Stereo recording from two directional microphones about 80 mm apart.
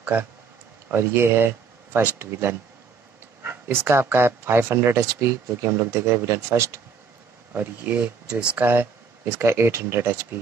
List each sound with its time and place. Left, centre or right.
0.0 s speech: centre
7.5 s speech: right
8.6 s speech: right